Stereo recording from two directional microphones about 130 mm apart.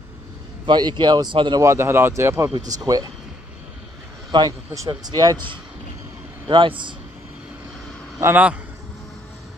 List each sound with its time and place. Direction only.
0.7 s speech: 35° right (ahead or behind)
1.6 s speech: 20° right (ahead or behind)
4.3 s speech: 30° right (ahead or behind)
8.2 s a man's voice: 15° right (ahead or behind)